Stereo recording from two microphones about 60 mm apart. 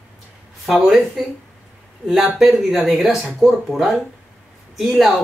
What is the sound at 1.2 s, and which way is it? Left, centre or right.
Speech, centre.